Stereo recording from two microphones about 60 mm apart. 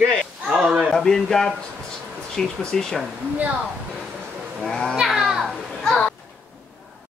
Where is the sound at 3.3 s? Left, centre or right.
Right.